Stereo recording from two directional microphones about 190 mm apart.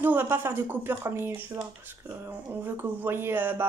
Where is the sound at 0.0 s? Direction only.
10° right (ahead or behind).